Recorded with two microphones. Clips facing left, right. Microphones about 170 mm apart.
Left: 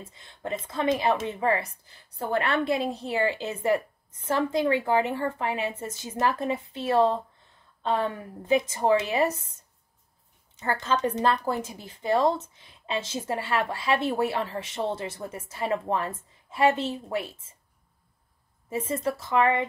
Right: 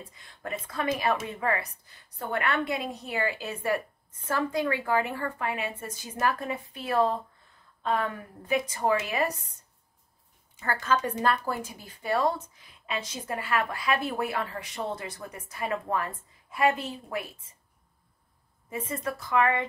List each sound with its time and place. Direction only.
0.1 s a woman's voice: 25° left (ahead or behind)
10.6 s a woman's voice: 20° left (ahead or behind)
18.7 s a woman's voice: 30° left (ahead or behind)